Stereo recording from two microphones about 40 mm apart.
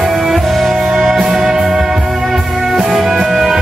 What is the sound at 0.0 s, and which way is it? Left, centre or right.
Music, centre.